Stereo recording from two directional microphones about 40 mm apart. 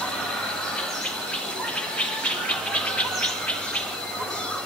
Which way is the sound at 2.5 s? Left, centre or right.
Left.